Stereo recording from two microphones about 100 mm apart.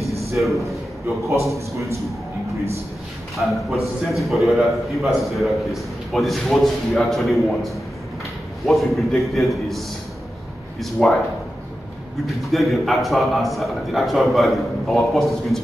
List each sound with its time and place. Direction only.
0.4 s a man's voice: centre (ahead or behind)
3.3 s a man's voice: centre (ahead or behind)
12.3 s a man's voice: centre (ahead or behind)